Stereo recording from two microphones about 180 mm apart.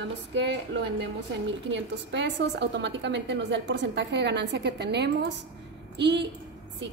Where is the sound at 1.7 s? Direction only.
80° right.